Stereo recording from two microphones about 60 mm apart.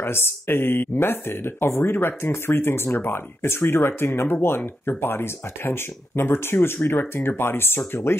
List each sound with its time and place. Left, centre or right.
0.0 s speech: left